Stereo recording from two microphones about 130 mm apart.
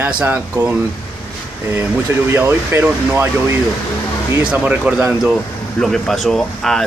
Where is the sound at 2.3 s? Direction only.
15° right (ahead or behind).